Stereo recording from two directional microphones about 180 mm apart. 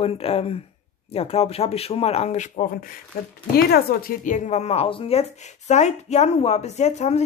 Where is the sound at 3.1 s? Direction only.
55° left (ahead or behind); by 7.2 s 40° left (ahead or behind).